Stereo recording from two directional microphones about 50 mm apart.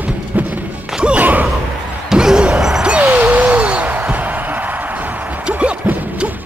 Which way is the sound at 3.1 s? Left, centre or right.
Right.